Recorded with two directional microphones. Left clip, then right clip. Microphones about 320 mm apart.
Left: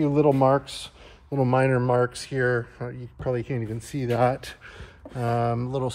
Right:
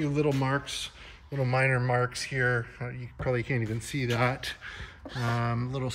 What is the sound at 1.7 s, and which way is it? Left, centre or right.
Speech, left.